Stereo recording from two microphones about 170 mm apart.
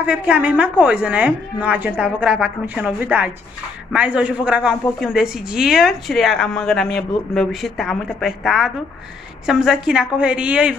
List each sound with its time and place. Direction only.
0.0 s a woman's voice: 10° right (ahead or behind)